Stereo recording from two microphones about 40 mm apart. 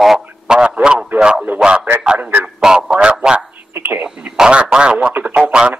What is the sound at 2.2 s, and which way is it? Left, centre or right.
Speech, right.